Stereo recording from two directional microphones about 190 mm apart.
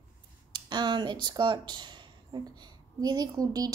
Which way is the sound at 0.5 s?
25° right (ahead or behind).